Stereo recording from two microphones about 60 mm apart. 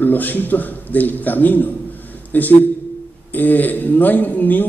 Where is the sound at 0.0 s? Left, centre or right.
Left.